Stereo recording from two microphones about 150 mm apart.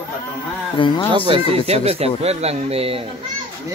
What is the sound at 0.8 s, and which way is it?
Speech, 35° left (ahead or behind).